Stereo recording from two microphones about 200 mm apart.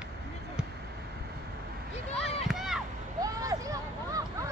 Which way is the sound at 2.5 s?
Centre (ahead or behind).